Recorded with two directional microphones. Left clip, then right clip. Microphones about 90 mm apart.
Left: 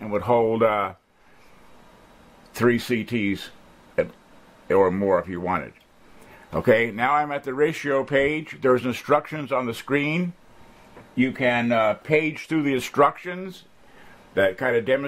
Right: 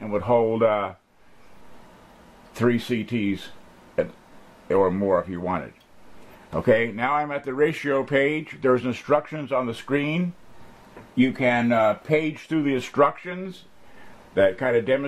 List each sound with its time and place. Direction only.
0.0 s speech: 40° left (ahead or behind)
2.5 s speech: 40° left (ahead or behind)
11.7 s speech: 30° left (ahead or behind)